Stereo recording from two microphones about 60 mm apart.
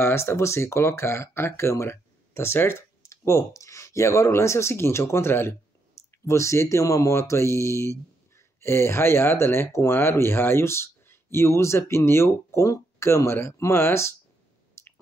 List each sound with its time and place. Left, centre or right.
0.0 s speech: left
6.2 s speech: left
14.8 s a sound: left